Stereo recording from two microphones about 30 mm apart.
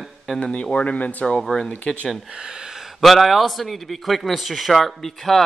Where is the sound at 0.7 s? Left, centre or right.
Left.